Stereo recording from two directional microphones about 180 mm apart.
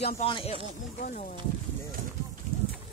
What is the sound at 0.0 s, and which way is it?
Speech, 35° left (ahead or behind).